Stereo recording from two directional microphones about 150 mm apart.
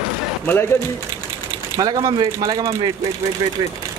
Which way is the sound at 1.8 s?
25° right (ahead or behind).